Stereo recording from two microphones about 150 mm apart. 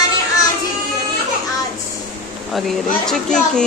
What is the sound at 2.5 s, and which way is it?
Speech, centre (ahead or behind).